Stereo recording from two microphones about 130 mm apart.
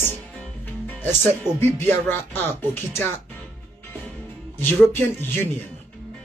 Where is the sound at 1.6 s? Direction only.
15° left (ahead or behind).